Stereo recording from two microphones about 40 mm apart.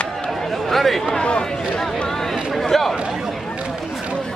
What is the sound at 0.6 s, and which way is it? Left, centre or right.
Speech, centre.